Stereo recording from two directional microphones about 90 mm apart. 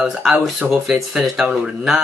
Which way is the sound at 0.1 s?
5° right (ahead or behind).